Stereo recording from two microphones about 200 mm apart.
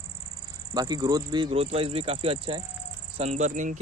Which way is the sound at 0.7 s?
20° right (ahead or behind).